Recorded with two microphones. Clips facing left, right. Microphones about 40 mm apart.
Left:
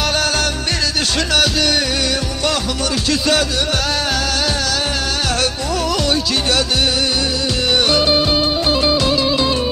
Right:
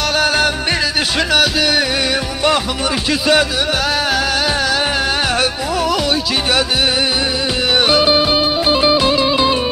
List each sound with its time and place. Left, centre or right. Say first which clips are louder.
3.1 s music: right 3 dB; centre
5.4 s music: right 2 dB; centre
7.9 s music: right 2 dB; centre